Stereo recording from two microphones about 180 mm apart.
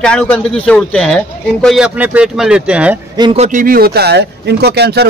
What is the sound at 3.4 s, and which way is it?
Speech, 45° right (ahead or behind).